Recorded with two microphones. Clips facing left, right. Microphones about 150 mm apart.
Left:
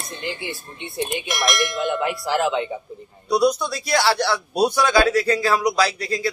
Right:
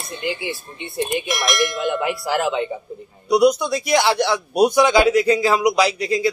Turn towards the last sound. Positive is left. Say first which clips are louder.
# right 4 dB
turn(degrees=-20)  # may be behind; listen again after turning